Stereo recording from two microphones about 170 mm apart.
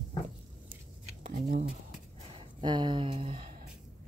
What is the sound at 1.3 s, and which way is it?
Speech, 55° right (ahead or behind).